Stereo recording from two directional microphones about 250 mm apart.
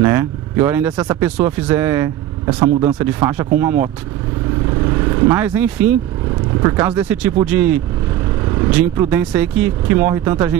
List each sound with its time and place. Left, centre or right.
0.0 s speech: centre
2.7 s speech: right
3.0 s speech: centre
5.3 s speech: centre
8.9 s speech: centre